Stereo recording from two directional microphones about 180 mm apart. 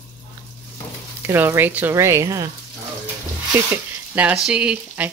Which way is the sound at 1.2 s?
15° right (ahead or behind).